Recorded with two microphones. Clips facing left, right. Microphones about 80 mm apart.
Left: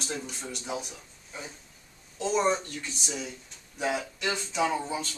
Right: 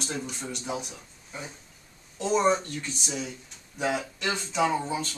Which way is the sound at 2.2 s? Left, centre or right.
Centre.